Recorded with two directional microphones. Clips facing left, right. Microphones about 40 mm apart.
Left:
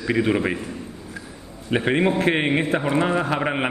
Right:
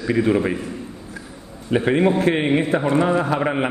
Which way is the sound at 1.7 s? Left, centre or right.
Left.